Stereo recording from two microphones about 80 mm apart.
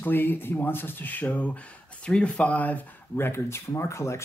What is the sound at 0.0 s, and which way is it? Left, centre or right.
Speech, left.